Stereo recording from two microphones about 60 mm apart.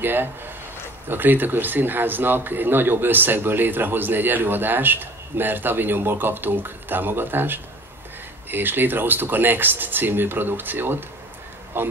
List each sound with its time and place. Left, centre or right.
0.0 s a man's voice: right